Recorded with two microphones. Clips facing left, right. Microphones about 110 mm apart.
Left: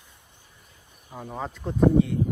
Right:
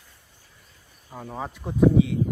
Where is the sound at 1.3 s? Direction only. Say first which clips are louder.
Left 1 dB; 10° right (ahead or behind).